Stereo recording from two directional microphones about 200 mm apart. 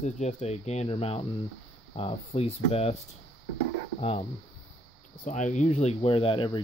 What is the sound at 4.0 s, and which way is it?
Speech, 30° left (ahead or behind).